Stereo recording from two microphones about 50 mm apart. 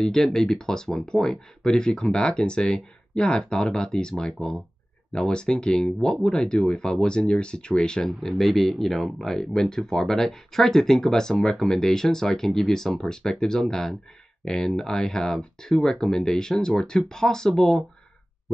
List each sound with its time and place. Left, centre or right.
0.0 s speech: centre
8.2 s speech: centre